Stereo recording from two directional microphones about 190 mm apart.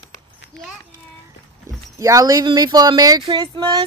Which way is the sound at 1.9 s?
15° right (ahead or behind).